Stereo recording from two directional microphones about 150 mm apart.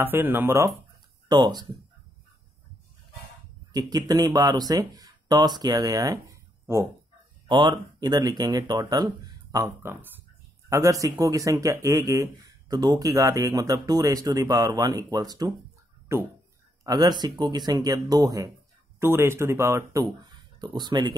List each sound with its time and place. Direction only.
0.0 s speech: 15° right (ahead or behind)
1.3 s speech: 30° right (ahead or behind)
3.7 s speech: 25° right (ahead or behind)
7.4 s speech: 30° right (ahead or behind)